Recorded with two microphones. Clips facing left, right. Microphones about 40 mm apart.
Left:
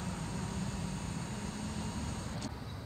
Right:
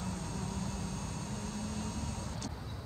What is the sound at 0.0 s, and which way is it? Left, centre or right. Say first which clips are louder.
Vehicle: even; left.